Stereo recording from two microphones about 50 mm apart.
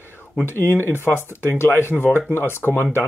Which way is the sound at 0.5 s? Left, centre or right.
Right.